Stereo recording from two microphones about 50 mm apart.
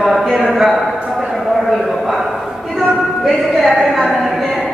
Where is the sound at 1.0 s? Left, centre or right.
Centre.